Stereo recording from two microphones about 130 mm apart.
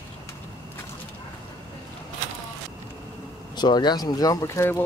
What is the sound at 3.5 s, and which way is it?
Speech, 35° left (ahead or behind).